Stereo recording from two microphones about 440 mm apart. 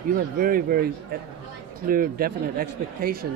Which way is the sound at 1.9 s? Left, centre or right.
Centre.